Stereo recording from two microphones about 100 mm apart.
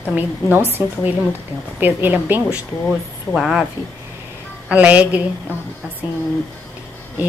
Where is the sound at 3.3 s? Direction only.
5° right (ahead or behind).